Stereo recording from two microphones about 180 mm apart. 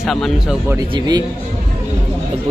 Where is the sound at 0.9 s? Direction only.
25° right (ahead or behind).